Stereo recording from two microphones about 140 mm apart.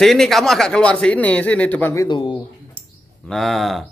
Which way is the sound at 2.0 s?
35° left (ahead or behind).